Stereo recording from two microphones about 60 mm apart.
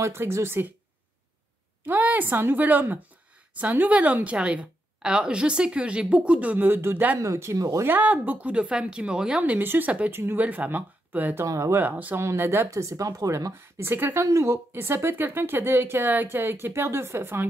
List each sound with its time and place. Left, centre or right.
0.0 s speech: right
1.9 s a woman's voice: right
6.6 s speech: right
7.2 s speech: right
7.8 s a woman's voice: right; by 9.4 s centre
9.4 s a woman's voice: right
10.1 s speech: right
10.4 s a woman's voice: right
11.4 s speech: right
11.7 s speech: right
12.2 s speech: right
12.7 s speech: right
13.5 s speech: right
14.2 s speech: right